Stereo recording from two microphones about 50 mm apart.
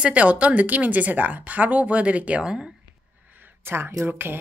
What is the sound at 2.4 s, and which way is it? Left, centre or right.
Speech, centre.